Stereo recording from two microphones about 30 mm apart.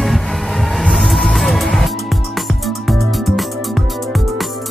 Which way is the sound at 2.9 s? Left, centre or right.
Centre.